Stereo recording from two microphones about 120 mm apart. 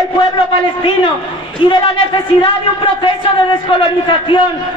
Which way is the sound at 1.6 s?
45° left (ahead or behind).